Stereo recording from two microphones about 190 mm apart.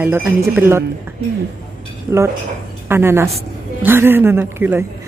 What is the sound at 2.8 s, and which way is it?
A woman's voice, 15° right (ahead or behind).